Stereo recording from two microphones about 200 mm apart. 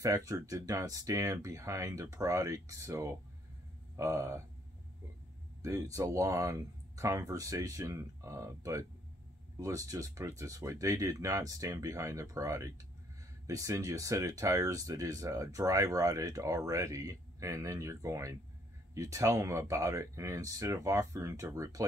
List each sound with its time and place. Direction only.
0.0 s speech: 15° right (ahead or behind)
5.6 s speech: 15° right (ahead or behind)